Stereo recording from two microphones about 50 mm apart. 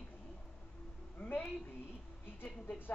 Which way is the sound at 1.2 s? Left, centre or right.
Left.